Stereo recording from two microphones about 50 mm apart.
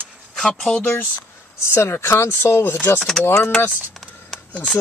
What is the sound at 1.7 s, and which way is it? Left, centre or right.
Speech, left.